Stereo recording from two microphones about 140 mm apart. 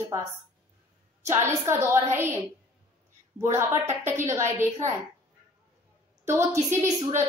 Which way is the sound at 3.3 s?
20° right (ahead or behind).